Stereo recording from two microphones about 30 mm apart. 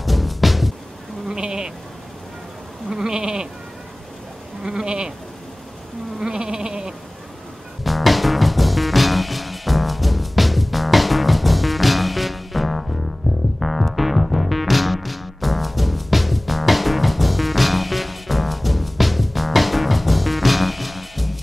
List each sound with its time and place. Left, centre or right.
0.0 s music: centre
1.3 s sheep: right
2.9 s sheep: right
4.6 s sheep: right
6.1 s sheep: right
7.8 s music: centre